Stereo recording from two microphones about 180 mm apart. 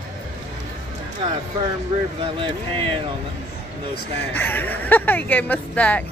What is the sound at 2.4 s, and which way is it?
Speech, 30° right (ahead or behind).